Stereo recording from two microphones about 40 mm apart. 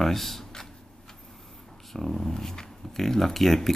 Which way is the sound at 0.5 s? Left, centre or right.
Centre.